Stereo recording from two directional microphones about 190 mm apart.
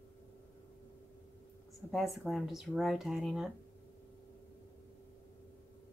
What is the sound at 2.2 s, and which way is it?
Speech, centre (ahead or behind).